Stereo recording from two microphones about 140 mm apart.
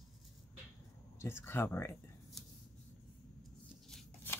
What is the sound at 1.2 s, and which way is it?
Speech, 15° left (ahead or behind).